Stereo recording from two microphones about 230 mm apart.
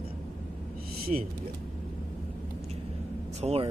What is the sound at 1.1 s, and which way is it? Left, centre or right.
Speech, right.